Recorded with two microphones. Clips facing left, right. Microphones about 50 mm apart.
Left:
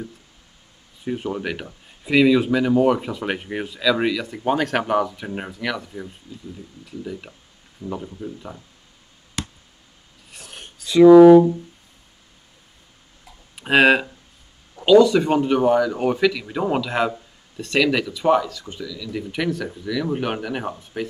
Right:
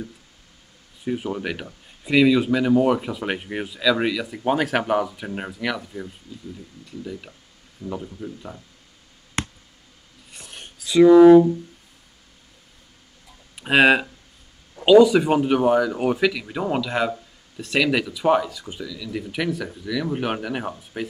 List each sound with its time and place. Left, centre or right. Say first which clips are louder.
1.0 s a man's voice: even; centre
9.4 s a sound: right 3 dB; right
10.3 s a sound: left 1 dB; centre
13.6 s speech: left 1 dB; centre
14.8 s speech: even; centre
16.6 s a man's voice: left 2 dB; centre
17.6 s speech: left 1 dB; centre